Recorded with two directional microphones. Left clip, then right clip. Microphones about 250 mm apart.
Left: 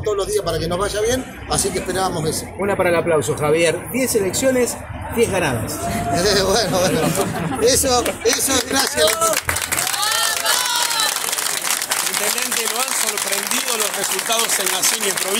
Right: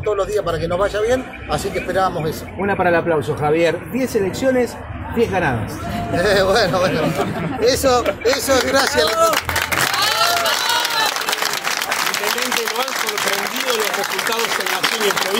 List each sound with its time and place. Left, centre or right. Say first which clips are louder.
0.3 s speech: right 1 dB; centre
2.6 s a man's voice: right 1 dB; centre
6.1 s speech: right 3 dB; centre